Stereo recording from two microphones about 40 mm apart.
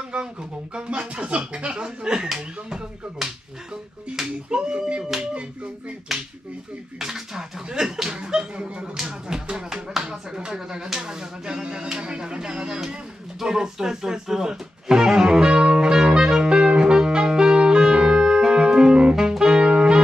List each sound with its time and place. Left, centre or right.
0.1 s speech: right
2.2 s speech: centre
6.1 s speech: centre
13.4 s music: centre